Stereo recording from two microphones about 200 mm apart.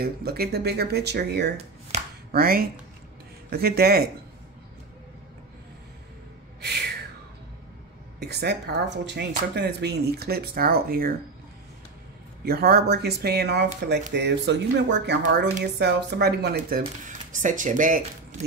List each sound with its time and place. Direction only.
0.0 s speech: 50° right (ahead or behind)
6.6 s gasp: 55° right (ahead or behind)
8.2 s speech: 55° right (ahead or behind)
12.4 s speech: 50° right (ahead or behind)